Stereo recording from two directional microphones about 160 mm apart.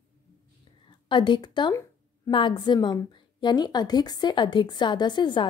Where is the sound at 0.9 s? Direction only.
30° left (ahead or behind).